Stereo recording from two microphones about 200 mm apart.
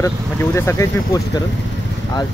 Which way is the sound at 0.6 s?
15° left (ahead or behind).